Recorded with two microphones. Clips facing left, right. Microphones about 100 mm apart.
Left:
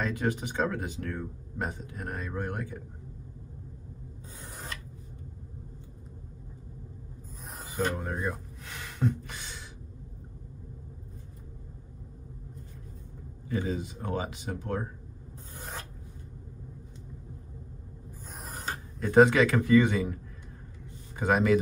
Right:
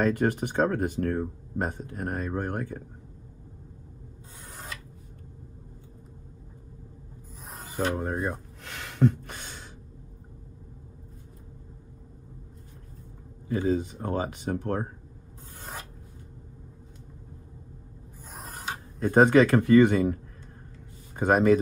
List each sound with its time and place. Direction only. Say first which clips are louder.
0.0 s speech: right 6 dB; 55° right (ahead or behind)
8.0 s speech: right 3 dB; 35° right (ahead or behind)
8.6 s a sound: right 6 dB; 65° right (ahead or behind); by 9.7 s 50° right (ahead or behind)
13.5 s speech: right 6 dB; 35° right (ahead or behind)
18.9 s speech: right 2 dB; 40° right (ahead or behind)
21.2 s speech: right 4 dB; 50° right (ahead or behind)